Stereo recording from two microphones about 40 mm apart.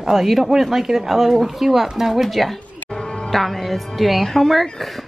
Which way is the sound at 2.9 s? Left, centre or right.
Centre.